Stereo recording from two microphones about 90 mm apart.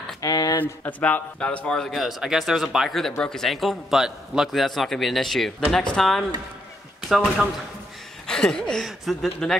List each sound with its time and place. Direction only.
0.2 s a sound: 40° left (ahead or behind)
0.6 s a man's voice: 20° left (ahead or behind)
8.3 s a man's voice: 5° left (ahead or behind)